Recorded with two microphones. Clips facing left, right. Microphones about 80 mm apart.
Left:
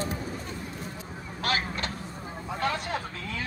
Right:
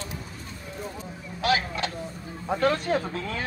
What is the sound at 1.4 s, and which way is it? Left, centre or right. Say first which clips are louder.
Vehicle: right 5 dB; left.